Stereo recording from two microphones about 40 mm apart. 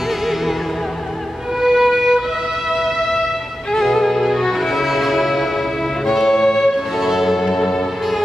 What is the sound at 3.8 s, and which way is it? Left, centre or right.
Music, centre.